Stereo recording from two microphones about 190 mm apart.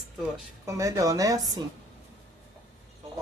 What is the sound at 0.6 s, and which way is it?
Speech, 15° right (ahead or behind).